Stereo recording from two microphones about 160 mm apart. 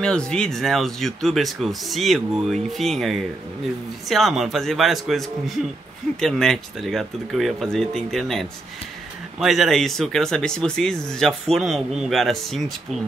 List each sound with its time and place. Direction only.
0.0 s speech: 5° left (ahead or behind)